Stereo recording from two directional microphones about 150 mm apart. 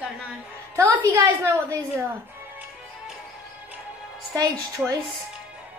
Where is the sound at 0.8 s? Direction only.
20° right (ahead or behind).